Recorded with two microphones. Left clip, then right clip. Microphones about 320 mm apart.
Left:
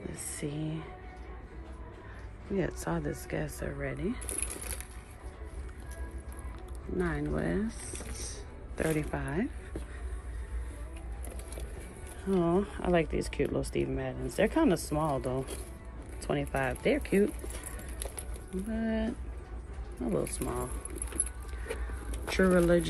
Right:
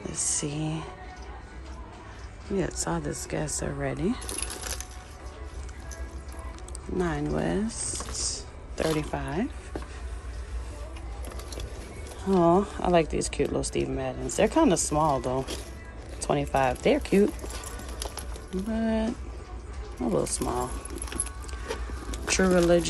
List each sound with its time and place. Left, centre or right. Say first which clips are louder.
0.1 s speech: right 8 dB; centre
2.5 s speech: right 4 dB; centre
7.0 s speech: right 5 dB; centre
12.3 s speech: right 7 dB; centre
18.7 s speech: right 6 dB; centre
22.4 s speech: right 3 dB; centre